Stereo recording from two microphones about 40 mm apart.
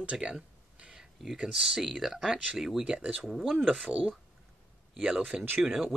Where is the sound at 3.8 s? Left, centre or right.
Right.